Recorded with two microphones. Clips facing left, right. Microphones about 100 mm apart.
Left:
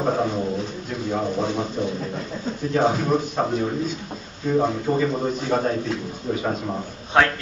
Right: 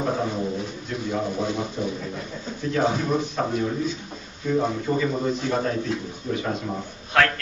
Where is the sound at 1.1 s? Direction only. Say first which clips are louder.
Left 3 dB; 20° left (ahead or behind).